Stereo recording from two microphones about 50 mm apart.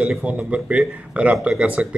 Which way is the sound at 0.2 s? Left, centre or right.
Right.